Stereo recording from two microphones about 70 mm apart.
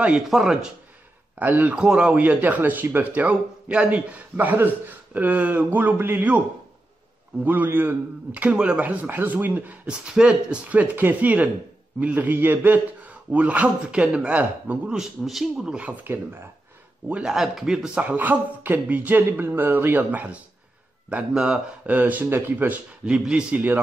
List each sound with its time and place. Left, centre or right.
0.3 s speech: centre
1.4 s a man's voice: right
1.8 s a man's voice: centre
7.4 s a man's voice: right
9.8 s a man's voice: centre
15.0 s a man's voice: centre
17.1 s speech: centre
18.0 s a man's voice: right
21.1 s speech: centre
21.8 s a man's voice: right
23.0 s speech: centre